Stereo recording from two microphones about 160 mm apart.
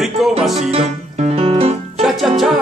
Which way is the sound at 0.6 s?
40° right (ahead or behind).